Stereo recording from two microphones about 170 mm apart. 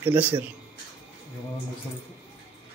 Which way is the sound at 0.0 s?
10° right (ahead or behind).